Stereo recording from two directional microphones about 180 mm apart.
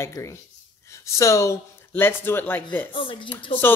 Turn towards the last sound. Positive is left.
turn(degrees=30)  # may be behind; listen again after turning